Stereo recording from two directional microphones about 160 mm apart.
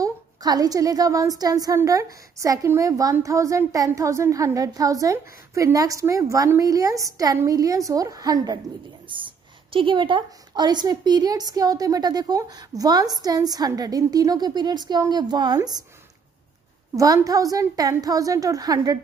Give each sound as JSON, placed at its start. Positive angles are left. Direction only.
{"t": 0.0, "sound": "a woman's voice", "side_deg": -25}
{"t": 16.9, "sound": "a woman's voice", "side_deg": -20}